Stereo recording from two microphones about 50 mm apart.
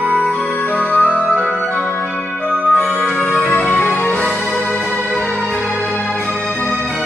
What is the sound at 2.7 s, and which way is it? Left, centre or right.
Music, left.